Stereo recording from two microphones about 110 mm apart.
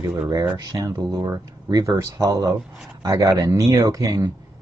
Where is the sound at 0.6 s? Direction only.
35° right (ahead or behind).